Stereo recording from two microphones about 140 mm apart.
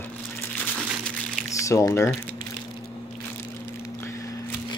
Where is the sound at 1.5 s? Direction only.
20° left (ahead or behind).